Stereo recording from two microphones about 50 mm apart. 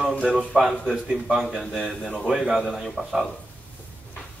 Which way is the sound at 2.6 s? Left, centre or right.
Centre.